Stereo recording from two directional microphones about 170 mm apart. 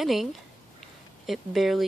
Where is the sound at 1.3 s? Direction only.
Centre (ahead or behind).